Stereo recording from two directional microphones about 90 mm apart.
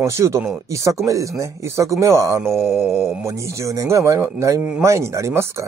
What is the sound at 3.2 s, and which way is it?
Speech, 35° right (ahead or behind).